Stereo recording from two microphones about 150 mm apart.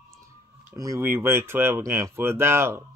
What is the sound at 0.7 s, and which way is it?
Speech, 20° right (ahead or behind).